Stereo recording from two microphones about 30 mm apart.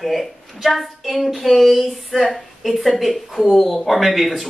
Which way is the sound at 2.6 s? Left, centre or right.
Centre.